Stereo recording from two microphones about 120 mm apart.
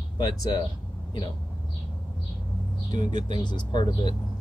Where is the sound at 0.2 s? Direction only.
35° left (ahead or behind).